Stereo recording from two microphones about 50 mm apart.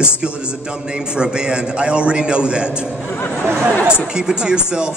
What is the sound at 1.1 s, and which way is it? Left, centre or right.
A man's voice, centre.